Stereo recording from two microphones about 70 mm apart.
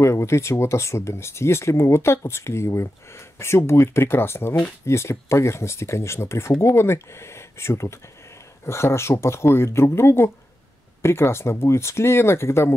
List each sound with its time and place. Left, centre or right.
0.0 s speech: left